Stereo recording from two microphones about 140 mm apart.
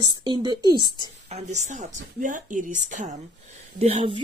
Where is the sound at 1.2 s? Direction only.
55° right (ahead or behind).